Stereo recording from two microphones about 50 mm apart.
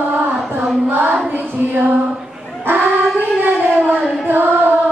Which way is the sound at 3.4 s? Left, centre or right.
Right.